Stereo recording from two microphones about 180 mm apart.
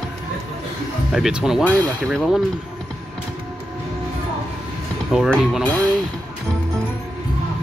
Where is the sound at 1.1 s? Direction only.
Centre (ahead or behind).